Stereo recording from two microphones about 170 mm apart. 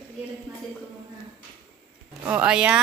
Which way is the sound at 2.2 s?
10° right (ahead or behind).